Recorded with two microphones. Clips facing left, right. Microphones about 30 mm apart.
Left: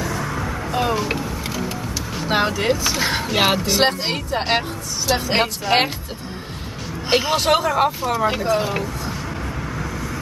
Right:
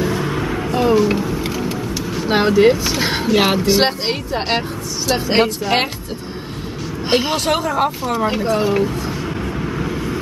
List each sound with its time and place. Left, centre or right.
0.0 s vehicle: right
0.7 s speech: centre
1.1 s a sound: centre
2.2 s speech: centre
3.3 s speech: centre
3.6 s speech: centre
7.1 s speech: centre
7.3 s speech: centre
8.8 s vehicle: centre
9.8 s vehicle: right